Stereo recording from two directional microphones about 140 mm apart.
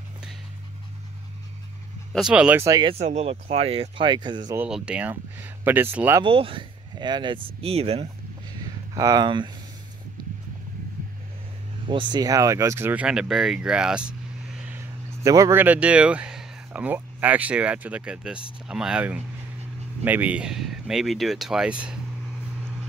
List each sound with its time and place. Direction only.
2.1 s speech: 5° right (ahead or behind)
2.6 s speech: 25° right (ahead or behind)
2.9 s speech: 50° right (ahead or behind); by 4.6 s 30° right (ahead or behind)
4.6 s speech: 5° right (ahead or behind)
6.2 s speech: 40° right (ahead or behind)
8.9 s speech: 25° right (ahead or behind)
11.9 s speech: 35° right (ahead or behind); by 14.0 s 5° right (ahead or behind)
15.2 s speech: 25° right (ahead or behind)
15.6 s speech: 10° right (ahead or behind)